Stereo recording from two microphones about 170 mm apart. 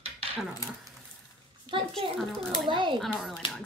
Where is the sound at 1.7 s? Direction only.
30° right (ahead or behind).